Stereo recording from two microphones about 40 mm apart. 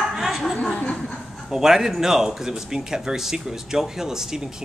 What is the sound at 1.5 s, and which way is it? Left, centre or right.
Speech, centre.